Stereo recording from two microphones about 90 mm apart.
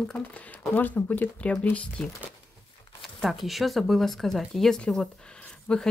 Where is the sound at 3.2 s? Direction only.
Centre (ahead or behind).